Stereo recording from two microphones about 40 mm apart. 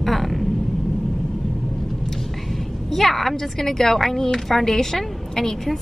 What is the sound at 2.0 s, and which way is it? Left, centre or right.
A woman's voice, centre.